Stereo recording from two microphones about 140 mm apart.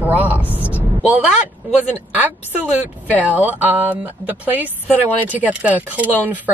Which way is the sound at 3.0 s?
10° right (ahead or behind).